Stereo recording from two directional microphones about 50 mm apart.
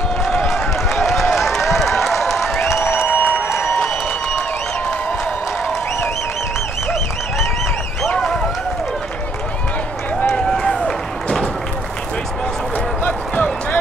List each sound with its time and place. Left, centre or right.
0.5 s a sound: centre
1.3 s applause: centre
3.1 s applause: left
3.4 s applause: left
10.4 s run: centre
13.0 s a sound: left